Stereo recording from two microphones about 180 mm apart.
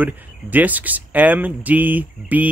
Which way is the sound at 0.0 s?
10° right (ahead or behind).